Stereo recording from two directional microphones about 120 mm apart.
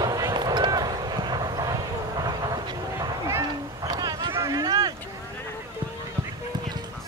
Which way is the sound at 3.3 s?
35° right (ahead or behind).